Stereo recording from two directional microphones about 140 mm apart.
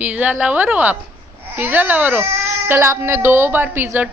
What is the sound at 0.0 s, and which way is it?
Speech, 10° right (ahead or behind).